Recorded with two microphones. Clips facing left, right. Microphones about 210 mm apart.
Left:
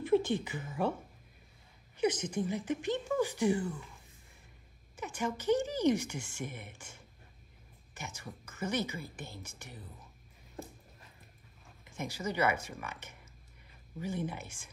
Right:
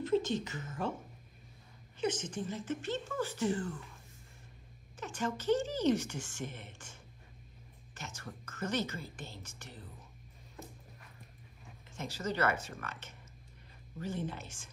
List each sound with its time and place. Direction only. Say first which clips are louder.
0.1 s a sound: left 3 dB; 55° left (ahead or behind)
0.4 s speech: left 3 dB; 10° left (ahead or behind)
2.0 s speech: left 4 dB; 10° left (ahead or behind)
4.9 s speech: left 1 dB; 10° left (ahead or behind)
12.0 s speech: left 1 dB; 10° left (ahead or behind)